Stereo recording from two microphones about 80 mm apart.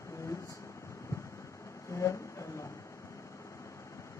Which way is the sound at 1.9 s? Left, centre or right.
Left.